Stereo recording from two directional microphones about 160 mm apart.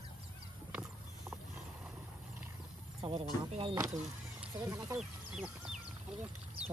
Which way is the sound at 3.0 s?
35° right (ahead or behind).